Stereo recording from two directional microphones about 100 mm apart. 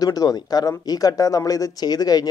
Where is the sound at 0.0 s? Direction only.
40° left (ahead or behind).